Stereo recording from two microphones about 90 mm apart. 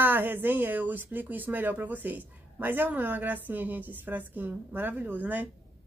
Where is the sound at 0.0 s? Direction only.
25° right (ahead or behind).